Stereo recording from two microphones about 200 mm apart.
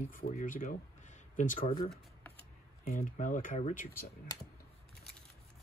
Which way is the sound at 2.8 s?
40° left (ahead or behind).